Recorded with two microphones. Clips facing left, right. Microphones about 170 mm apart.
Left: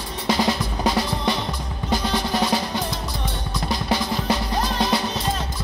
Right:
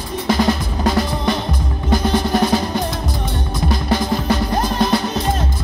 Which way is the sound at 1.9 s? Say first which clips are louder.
Right 6 dB; 50° right (ahead or behind).